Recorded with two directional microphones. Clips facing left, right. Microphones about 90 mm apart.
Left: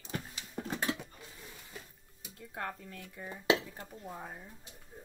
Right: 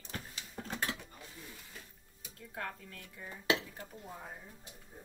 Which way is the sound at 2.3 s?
15° left (ahead or behind).